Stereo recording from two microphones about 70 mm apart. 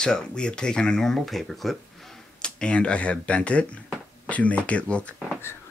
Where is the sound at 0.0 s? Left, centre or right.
Centre.